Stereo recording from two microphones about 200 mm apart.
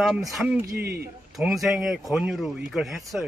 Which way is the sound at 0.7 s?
55° right (ahead or behind).